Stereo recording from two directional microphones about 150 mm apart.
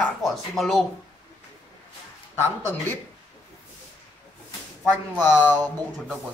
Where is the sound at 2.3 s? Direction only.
15° left (ahead or behind).